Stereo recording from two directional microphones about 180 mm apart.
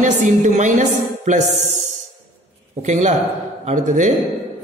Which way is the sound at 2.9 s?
40° right (ahead or behind).